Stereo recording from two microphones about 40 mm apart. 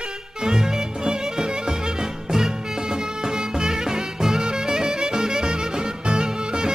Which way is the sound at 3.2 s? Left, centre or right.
Centre.